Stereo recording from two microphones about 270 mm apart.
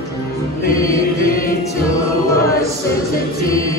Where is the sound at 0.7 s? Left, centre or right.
Centre.